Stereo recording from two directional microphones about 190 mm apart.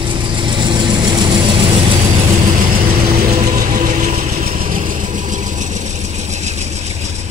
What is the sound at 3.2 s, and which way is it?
Vehicle, 45° right (ahead or behind).